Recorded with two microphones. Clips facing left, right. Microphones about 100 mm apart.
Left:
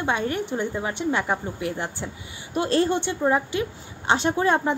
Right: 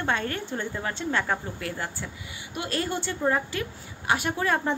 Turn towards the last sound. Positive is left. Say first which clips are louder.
# left 5 dB
turn(degrees=25)  # may be behind; listen again after turning